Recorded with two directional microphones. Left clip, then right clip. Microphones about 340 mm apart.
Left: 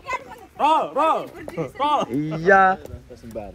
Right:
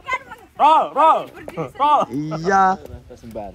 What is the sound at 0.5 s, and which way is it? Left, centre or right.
Speech, centre.